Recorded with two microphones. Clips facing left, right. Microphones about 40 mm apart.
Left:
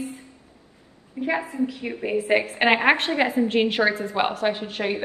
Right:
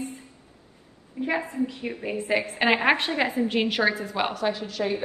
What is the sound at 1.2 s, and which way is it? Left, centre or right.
Speech, left.